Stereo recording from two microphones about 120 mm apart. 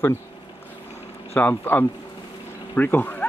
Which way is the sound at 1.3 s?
15° left (ahead or behind).